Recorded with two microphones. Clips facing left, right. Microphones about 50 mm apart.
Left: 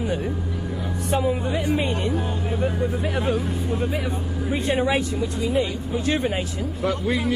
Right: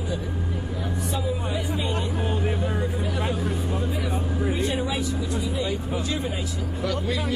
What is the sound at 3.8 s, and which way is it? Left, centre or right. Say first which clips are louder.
Speech: left 2 dB; left.